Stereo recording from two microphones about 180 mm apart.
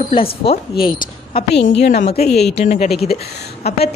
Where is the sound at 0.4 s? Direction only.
30° left (ahead or behind).